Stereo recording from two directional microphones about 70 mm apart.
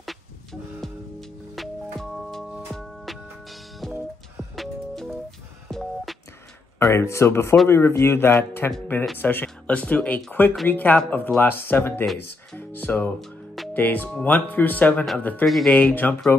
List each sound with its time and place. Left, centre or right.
0.0 s music: centre
5.7 s telephone dialing: centre
6.8 s a man's voice: left
12.5 s music: left
13.7 s speech: left
15.4 s speech: centre
15.7 s speech: left